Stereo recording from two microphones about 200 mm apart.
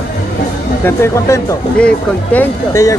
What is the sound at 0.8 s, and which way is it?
Speech, 10° left (ahead or behind).